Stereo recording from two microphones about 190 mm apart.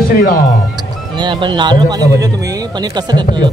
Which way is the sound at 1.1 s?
25° right (ahead or behind).